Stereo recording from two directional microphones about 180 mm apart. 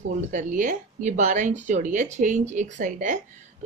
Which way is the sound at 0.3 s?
45° right (ahead or behind).